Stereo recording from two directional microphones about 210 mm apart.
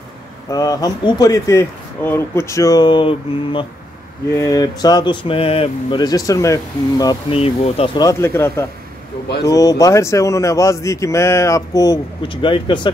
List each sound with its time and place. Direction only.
0.5 s speech: 15° left (ahead or behind)